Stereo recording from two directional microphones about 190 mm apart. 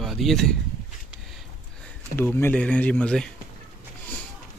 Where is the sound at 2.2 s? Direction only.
10° left (ahead or behind).